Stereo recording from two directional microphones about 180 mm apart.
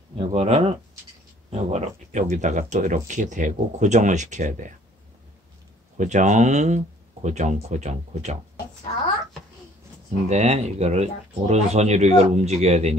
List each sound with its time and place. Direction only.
0.2 s speech: 35° right (ahead or behind)
5.9 s speech: 40° right (ahead or behind)
10.2 s speech: 40° right (ahead or behind)